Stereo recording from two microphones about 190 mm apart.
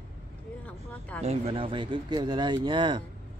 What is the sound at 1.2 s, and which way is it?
Speech, 35° right (ahead or behind).